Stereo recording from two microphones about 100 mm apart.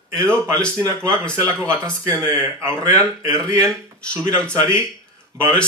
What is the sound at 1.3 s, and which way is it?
Speech, 25° right (ahead or behind).